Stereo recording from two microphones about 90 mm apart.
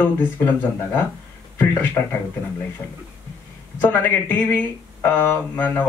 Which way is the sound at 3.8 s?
20° left (ahead or behind).